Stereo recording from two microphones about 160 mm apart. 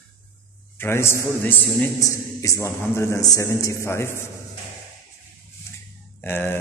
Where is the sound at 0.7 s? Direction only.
15° left (ahead or behind).